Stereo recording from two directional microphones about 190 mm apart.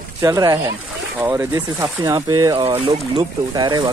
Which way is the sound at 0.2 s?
20° right (ahead or behind).